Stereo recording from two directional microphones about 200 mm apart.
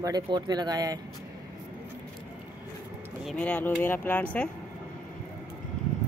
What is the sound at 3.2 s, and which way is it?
Speech, 5° left (ahead or behind).